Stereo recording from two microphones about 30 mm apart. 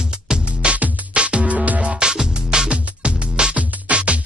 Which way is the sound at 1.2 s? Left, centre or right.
Right.